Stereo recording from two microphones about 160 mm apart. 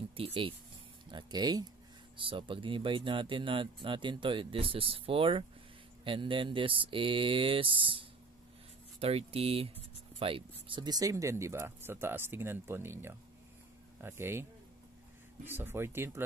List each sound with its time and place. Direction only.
0.1 s speech: 35° right (ahead or behind); by 14.4 s 15° right (ahead or behind)
15.4 s speech: 15° right (ahead or behind)